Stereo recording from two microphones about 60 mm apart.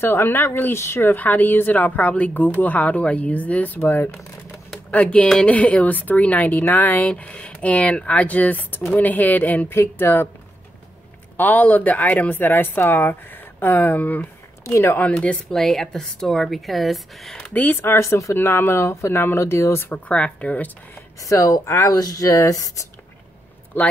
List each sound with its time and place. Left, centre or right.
0.0 s speech: left
4.9 s speech: centre
7.1 s speech: centre
9.7 s speech: left
11.3 s speech: left
14.6 s a sound: left
15.0 s speech: left
15.5 s speech: centre
17.5 s speech: left
17.9 s speech: left
18.3 s speech: left
19.9 s speech: left
21.2 s speech: left
23.7 s speech: left